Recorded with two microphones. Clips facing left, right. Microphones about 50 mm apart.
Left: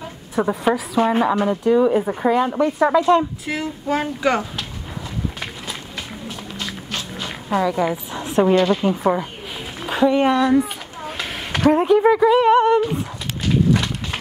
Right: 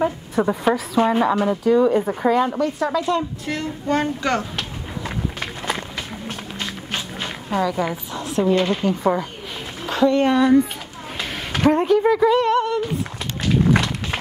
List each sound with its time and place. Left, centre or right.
0.4 s speech: centre
2.6 s a woman's voice: left
3.4 s a child's voice: centre
7.2 s speech: centre
8.1 s a woman's voice: left
9.0 s a child's voice: centre
10.3 s speech: centre
11.7 s a child's voice: centre; by 12.8 s left